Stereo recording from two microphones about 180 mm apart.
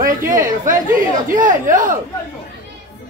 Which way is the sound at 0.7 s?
45° right (ahead or behind).